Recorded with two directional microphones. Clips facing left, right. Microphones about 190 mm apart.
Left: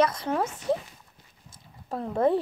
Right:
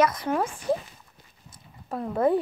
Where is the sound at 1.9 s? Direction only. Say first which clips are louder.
Right 1 dB; 25° left (ahead or behind).